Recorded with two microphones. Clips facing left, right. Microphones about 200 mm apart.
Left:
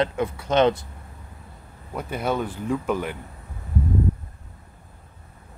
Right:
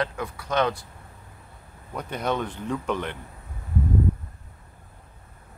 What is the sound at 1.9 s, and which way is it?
Speech, 5° left (ahead or behind).